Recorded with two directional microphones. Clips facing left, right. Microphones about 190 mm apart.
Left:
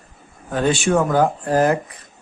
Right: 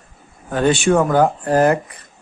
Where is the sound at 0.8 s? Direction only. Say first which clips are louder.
Right 2 dB; 60° right (ahead or behind).